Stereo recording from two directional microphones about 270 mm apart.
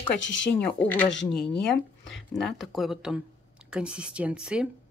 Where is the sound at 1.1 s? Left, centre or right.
Left.